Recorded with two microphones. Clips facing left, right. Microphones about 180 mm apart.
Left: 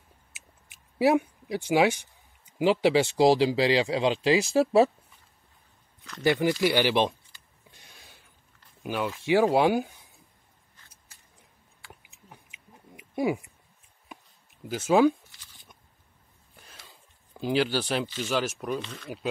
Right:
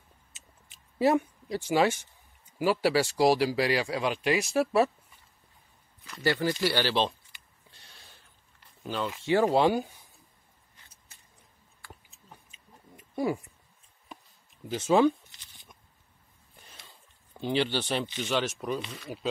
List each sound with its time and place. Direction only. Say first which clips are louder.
0.9 s speech: left 2 dB; 10° left (ahead or behind); by 4.9 s 30° left (ahead or behind)
6.2 s speech: left 4 dB; 15° left (ahead or behind)
7.7 s a sound: left 2 dB; 15° left (ahead or behind)
8.8 s speech: left 2 dB; 10° left (ahead or behind)
11.8 s a sound: even; 15° left (ahead or behind)
14.7 s speech: left 2 dB; 5° left (ahead or behind)
17.4 s speech: left 2 dB; 5° left (ahead or behind)
18.8 s speech: left 1 dB; 10° right (ahead or behind)